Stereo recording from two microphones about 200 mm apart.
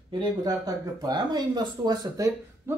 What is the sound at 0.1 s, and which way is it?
Speech, 20° right (ahead or behind).